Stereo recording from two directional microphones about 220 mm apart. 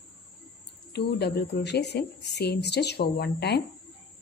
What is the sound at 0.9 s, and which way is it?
Speech, 50° left (ahead or behind).